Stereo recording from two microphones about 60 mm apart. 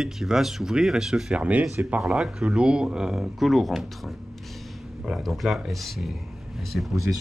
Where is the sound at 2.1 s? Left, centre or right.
Centre.